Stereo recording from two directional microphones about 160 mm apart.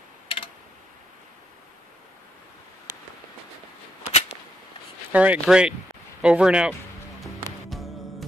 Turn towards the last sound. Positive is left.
turn(degrees=0)  # may be behind; listen again after turning